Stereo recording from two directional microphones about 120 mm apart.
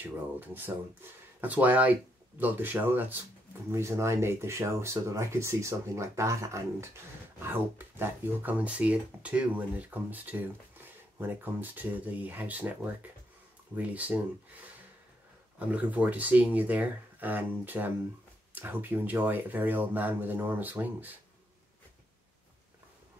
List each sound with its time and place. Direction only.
0.0 s speech: 15° right (ahead or behind)
15.7 s speech: 10° right (ahead or behind)